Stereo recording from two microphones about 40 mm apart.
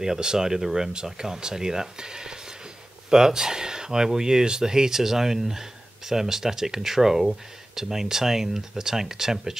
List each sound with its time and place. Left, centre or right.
0.0 s speech: centre